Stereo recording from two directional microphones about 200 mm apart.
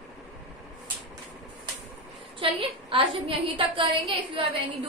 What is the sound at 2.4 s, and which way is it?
A woman's voice, 25° right (ahead or behind).